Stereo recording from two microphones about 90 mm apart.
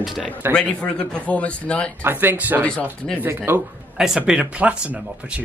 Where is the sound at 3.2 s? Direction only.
25° right (ahead or behind).